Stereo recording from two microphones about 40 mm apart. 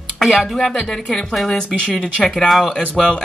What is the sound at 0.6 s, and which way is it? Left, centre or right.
Speech, centre.